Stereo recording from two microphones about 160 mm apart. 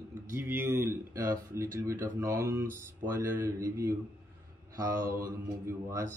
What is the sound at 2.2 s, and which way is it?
Speech, 20° right (ahead or behind).